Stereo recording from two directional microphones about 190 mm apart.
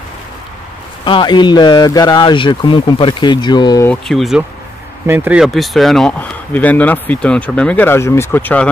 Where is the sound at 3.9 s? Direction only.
Centre (ahead or behind).